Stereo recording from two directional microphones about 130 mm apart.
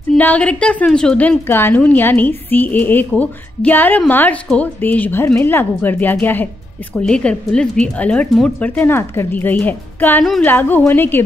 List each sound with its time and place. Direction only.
0.1 s a woman's voice: 10° left (ahead or behind)